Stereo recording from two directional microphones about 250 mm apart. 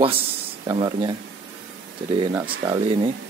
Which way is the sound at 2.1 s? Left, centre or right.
Centre.